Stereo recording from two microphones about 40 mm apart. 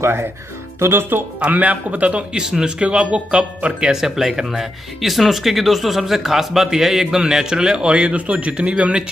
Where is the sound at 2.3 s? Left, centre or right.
Centre.